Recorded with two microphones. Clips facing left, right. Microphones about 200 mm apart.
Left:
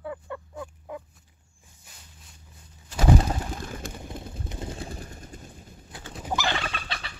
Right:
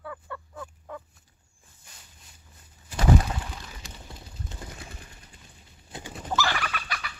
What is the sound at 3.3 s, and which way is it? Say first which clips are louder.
Pigeon: left 5 dB; 40° left (ahead or behind).